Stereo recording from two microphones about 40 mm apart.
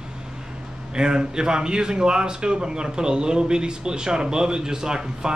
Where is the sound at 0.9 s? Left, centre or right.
Centre.